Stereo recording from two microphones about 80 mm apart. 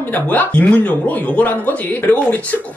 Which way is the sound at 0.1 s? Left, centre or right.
Left.